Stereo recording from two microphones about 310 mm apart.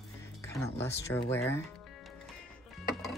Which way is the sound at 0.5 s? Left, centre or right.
Centre.